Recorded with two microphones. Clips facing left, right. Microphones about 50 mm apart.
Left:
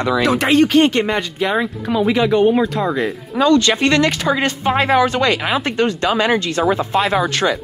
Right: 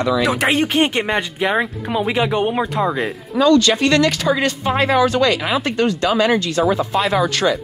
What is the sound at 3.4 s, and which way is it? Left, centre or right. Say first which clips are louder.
Speech: even; left.